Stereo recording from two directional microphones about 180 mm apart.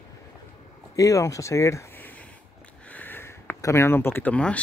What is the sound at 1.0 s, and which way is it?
Speech, 20° left (ahead or behind).